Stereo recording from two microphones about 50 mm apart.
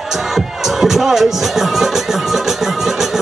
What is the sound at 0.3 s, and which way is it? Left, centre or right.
Speech, centre.